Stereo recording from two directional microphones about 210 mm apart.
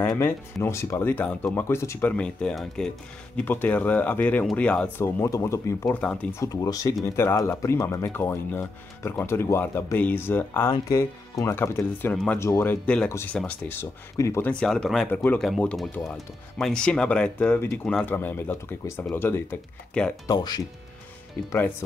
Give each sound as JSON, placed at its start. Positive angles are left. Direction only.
{"t": 0.0, "sound": "speech", "side_deg": 10}